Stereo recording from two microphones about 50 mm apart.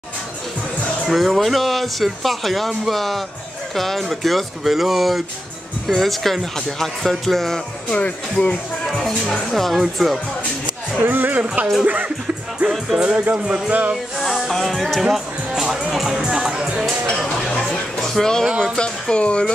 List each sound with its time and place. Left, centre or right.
1.0 s speech: centre
7.9 s speech: left
8.8 s speech: centre
11.0 s speech: right
12.9 s speech: right
14.5 s speech: centre
15.8 s music: centre
16.3 s music: centre
17.0 s speech: centre
18.8 s speech: left